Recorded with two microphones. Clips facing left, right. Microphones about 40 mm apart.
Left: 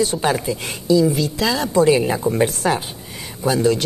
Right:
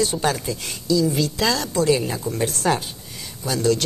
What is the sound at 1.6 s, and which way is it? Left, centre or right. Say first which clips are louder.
Speech: left 9 dB; centre.